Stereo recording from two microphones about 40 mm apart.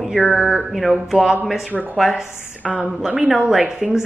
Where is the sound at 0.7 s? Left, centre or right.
Centre.